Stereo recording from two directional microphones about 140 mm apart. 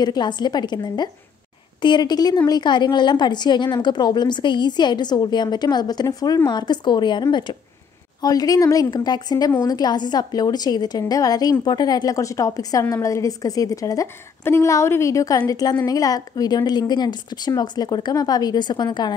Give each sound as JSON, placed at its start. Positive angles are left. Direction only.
{"t": 0.0, "sound": "a woman's voice", "side_deg": 30}